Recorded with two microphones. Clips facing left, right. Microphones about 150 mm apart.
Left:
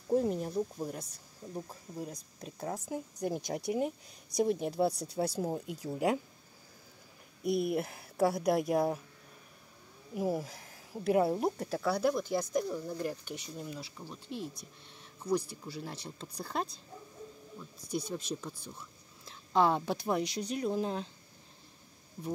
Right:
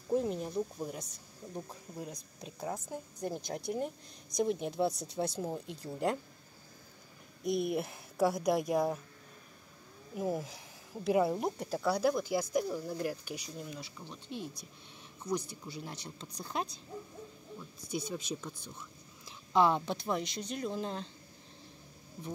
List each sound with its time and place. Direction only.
0.1 s speech: centre (ahead or behind)
7.4 s speech: centre (ahead or behind)
10.1 s speech: 5° left (ahead or behind)